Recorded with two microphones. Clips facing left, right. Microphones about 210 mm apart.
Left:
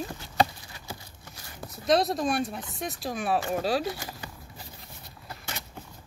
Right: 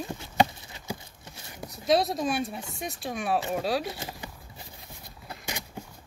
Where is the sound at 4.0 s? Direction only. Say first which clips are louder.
Right 1 dB; 20° right (ahead or behind).